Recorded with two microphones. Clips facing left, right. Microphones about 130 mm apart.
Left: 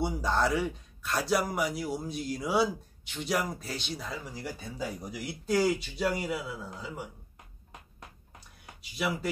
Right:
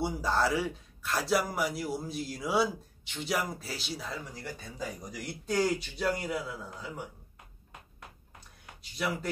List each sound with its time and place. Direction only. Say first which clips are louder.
0.0 s a man's voice: left 1 dB; centre (ahead or behind)
8.9 s speech: left 2 dB; 10° left (ahead or behind)